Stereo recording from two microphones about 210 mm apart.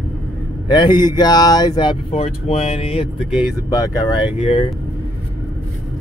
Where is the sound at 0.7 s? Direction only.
20° left (ahead or behind).